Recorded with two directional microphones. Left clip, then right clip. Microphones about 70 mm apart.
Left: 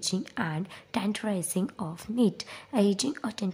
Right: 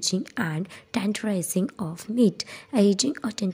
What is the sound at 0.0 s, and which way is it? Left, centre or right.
A woman's voice, right.